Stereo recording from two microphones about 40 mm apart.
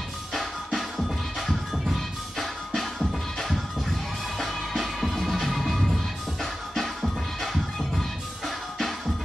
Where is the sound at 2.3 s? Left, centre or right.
Centre.